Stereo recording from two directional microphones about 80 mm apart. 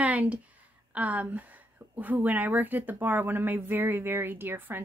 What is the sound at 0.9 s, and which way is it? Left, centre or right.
A woman's voice, centre.